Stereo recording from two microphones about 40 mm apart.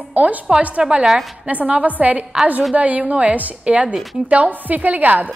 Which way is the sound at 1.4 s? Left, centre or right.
Right.